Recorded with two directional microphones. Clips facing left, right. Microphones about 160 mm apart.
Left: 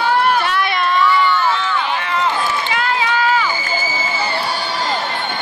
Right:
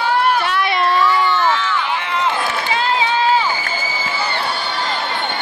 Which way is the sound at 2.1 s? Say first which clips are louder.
Left 1 dB; 25° right (ahead or behind).